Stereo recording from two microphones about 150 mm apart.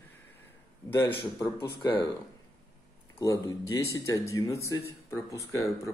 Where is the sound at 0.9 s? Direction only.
15° left (ahead or behind).